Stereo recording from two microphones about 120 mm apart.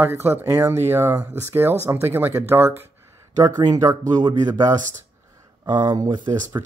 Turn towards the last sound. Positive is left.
turn(degrees=-35)  # may be behind; listen again after turning